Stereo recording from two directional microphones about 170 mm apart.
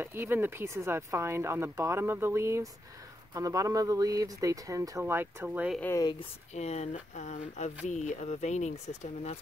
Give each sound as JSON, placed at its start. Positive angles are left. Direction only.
{"t": 0.0, "sound": "speech", "side_deg": -15}
{"t": 5.8, "sound": "speech", "side_deg": 15}
{"t": 6.5, "sound": "speech", "side_deg": 40}